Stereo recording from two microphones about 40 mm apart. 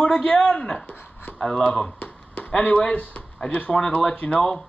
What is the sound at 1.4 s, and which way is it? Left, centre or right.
Speech, left.